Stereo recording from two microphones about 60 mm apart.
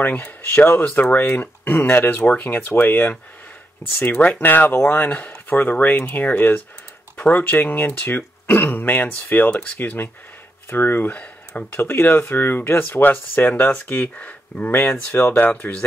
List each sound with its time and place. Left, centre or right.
0.0 s speech: left
11.8 s speech: left
14.7 s speech: left